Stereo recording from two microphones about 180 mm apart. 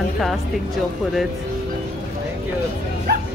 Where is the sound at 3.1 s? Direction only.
60° right (ahead or behind).